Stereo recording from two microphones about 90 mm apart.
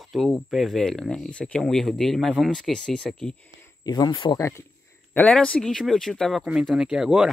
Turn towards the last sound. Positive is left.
turn(degrees=-5)  # may be behind; listen again after turning